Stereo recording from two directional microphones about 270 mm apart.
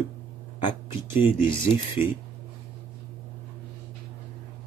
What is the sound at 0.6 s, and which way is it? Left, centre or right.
Speech, centre.